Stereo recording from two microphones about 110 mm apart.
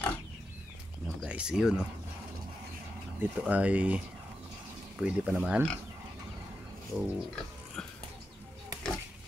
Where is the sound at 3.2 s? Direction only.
15° right (ahead or behind).